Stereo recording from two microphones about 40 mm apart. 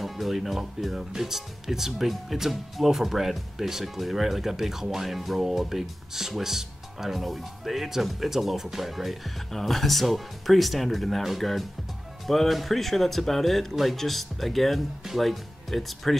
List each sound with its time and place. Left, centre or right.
0.0 s speech: centre